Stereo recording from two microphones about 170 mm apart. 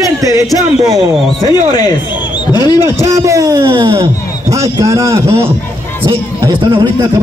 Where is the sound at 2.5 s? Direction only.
15° right (ahead or behind).